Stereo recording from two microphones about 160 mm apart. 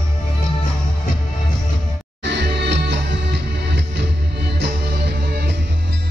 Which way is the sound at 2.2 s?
90° right.